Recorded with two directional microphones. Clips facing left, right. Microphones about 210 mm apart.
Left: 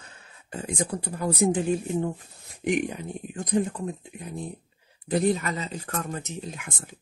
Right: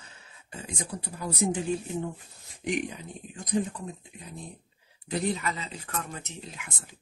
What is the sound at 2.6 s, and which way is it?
Speech, 55° left (ahead or behind).